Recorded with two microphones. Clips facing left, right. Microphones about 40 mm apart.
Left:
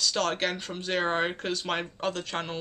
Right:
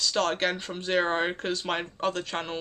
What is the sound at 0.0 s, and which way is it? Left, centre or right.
Speech, centre.